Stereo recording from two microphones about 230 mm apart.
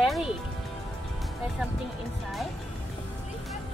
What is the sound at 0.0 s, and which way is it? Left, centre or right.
Music, centre.